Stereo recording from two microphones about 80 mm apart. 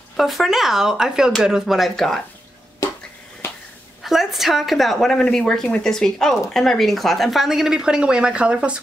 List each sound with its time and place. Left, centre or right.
0.2 s a woman's voice: centre
4.0 s a woman's voice: centre